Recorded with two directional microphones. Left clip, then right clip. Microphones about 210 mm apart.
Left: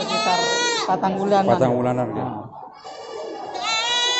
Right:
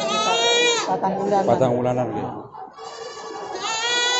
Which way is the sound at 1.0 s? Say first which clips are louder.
Left 1 dB; 50° left (ahead or behind).